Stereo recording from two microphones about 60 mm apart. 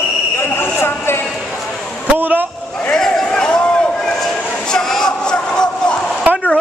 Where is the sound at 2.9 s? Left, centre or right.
Centre.